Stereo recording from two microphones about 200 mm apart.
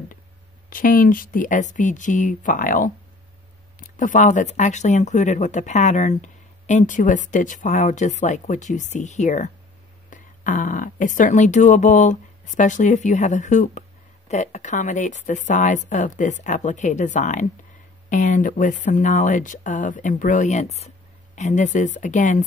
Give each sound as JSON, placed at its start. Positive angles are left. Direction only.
{"t": 0.7, "sound": "speech", "side_deg": 45}
{"t": 3.9, "sound": "speech", "side_deg": 40}